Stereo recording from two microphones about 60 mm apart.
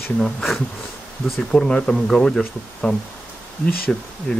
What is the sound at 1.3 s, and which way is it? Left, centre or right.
Speech, centre.